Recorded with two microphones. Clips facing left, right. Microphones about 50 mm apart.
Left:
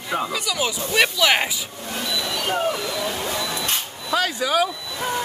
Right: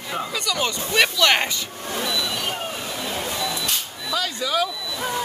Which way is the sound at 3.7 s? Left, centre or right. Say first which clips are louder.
Left 2 dB; left.